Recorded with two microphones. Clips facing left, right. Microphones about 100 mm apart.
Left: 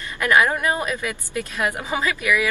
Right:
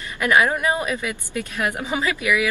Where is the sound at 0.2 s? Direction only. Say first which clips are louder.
Even; 15° right (ahead or behind).